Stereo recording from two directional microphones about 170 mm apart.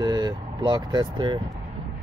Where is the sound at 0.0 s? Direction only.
25° right (ahead or behind).